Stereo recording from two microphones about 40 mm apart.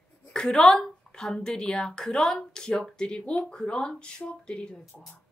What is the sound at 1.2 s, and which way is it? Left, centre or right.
A woman's voice, centre.